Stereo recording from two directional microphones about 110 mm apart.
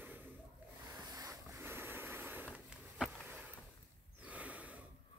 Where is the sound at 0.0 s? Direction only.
15° right (ahead or behind).